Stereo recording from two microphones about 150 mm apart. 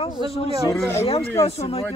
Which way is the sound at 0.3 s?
40° left (ahead or behind).